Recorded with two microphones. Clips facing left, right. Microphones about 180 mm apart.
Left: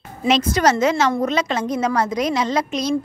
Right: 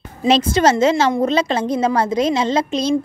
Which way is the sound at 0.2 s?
25° right (ahead or behind).